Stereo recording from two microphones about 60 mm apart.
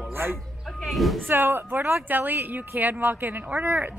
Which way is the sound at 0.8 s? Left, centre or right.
Centre.